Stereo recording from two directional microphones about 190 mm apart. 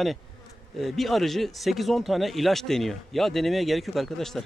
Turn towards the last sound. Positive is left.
turn(degrees=0)  # may be behind; listen again after turning